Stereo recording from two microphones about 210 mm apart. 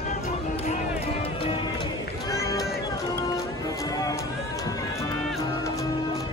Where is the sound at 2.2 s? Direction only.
15° left (ahead or behind).